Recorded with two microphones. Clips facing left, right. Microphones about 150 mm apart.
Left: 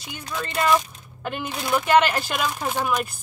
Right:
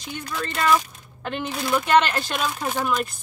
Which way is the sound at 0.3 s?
15° left (ahead or behind).